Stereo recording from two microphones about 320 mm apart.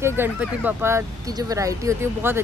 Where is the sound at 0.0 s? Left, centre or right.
Centre.